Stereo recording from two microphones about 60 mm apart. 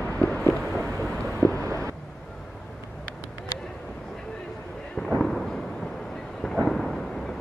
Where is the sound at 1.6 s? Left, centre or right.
Right.